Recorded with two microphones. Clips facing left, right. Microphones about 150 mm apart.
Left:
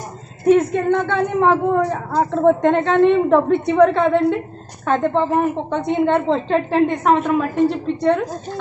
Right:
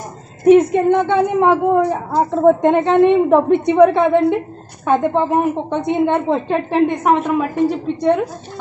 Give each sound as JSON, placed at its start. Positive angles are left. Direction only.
{"t": 0.5, "sound": "a woman's voice", "side_deg": -15}